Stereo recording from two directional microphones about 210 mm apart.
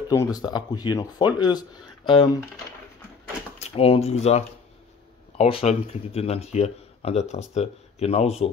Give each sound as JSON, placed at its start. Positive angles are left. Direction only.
{"t": 0.1, "sound": "speech", "side_deg": 15}
{"t": 3.6, "sound": "speech", "side_deg": 25}